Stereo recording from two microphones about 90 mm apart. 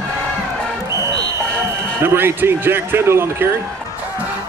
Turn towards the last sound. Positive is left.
turn(degrees=-25)  # may be behind; listen again after turning